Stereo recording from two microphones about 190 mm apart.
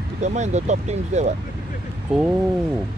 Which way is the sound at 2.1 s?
5° right (ahead or behind).